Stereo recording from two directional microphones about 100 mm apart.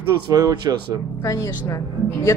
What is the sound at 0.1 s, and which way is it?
Speech, 35° right (ahead or behind).